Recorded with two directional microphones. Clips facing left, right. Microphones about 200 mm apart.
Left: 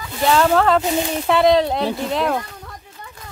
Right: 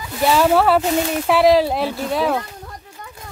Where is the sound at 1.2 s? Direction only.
5° right (ahead or behind).